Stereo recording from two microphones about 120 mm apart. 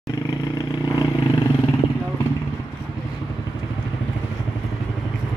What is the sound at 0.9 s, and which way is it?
Vehicle, 30° left (ahead or behind).